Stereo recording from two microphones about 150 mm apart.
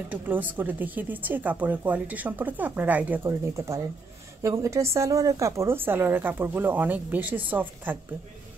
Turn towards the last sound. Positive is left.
turn(degrees=-10)  # may be behind; listen again after turning